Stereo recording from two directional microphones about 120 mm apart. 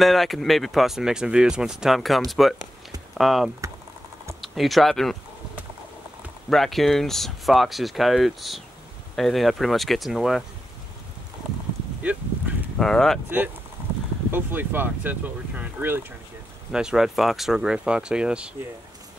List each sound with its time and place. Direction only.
0.0 s speech: centre (ahead or behind)
6.5 s speech: centre (ahead or behind)
12.0 s a sound: 10° right (ahead or behind)
12.7 s speech: 5° left (ahead or behind)
14.3 s speech: 15° right (ahead or behind)
16.7 s speech: 5° right (ahead or behind)